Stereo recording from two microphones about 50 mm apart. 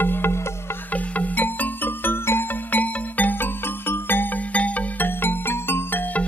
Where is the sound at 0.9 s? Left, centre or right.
Left.